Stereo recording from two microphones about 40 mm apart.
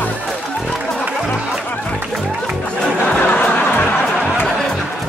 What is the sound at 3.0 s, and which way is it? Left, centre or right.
Music, left.